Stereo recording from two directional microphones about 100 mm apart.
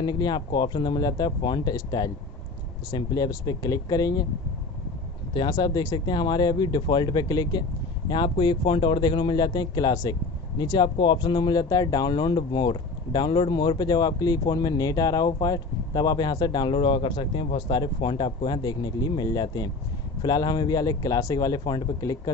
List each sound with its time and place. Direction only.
0.0 s speech: 50° left (ahead or behind)
5.5 s speech: 40° left (ahead or behind)